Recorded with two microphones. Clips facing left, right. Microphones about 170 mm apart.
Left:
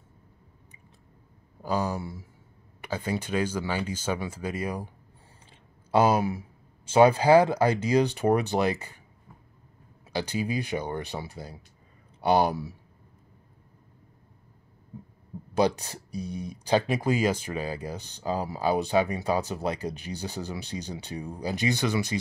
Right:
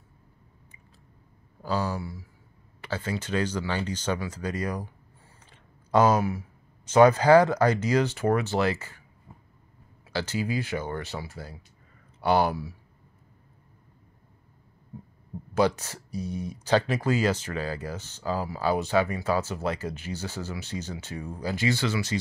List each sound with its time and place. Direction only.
1.6 s speech: 15° left (ahead or behind)
5.9 s speech: 10° left (ahead or behind)
10.1 s speech: 15° left (ahead or behind)
15.5 s speech: 15° left (ahead or behind)